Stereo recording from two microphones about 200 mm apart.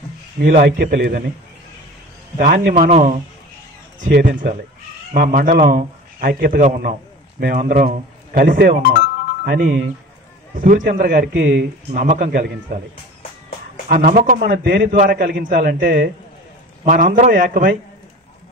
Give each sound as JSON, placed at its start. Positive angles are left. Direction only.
{"t": 0.4, "sound": "a man's voice", "side_deg": -45}
{"t": 2.3, "sound": "a man's voice", "side_deg": -45}
{"t": 2.9, "sound": "a man's voice", "side_deg": -35}
{"t": 13.8, "sound": "a man's voice", "side_deg": -45}